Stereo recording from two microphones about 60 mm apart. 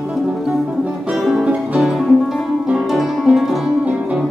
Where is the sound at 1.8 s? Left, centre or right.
Centre.